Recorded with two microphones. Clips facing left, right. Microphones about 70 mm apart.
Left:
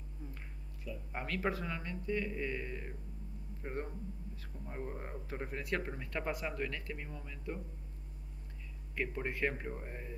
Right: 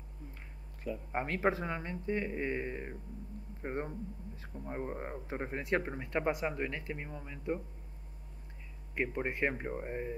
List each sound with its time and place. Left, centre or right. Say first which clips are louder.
1.1 s speech: right 5 dB; right
8.9 s speech: right 3 dB; right